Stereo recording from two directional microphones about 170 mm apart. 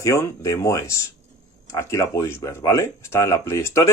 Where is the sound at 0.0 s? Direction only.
15° left (ahead or behind).